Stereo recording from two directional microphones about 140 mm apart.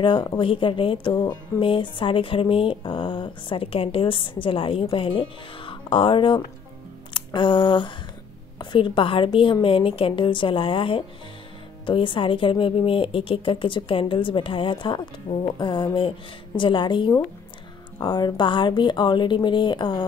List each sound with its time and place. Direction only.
0.0 s speech: 35° left (ahead or behind)
7.2 s a sound: 35° left (ahead or behind)
8.5 s speech: 35° left (ahead or behind)